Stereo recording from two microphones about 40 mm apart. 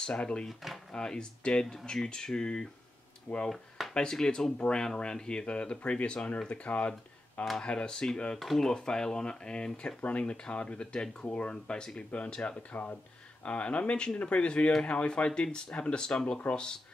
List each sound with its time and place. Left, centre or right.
0.0 s speech: left
3.4 s a sound: centre
3.9 s speech: centre
8.4 s speech: centre
10.0 s speech: left
10.3 s speech: centre